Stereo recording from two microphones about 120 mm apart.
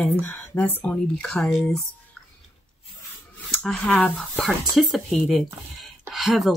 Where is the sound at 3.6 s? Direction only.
5° left (ahead or behind).